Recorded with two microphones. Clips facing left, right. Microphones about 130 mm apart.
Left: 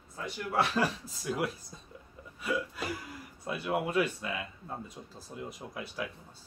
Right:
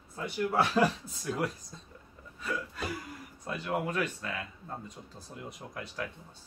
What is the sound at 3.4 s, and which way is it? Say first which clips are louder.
Speech: left 1 dB; 10° left (ahead or behind).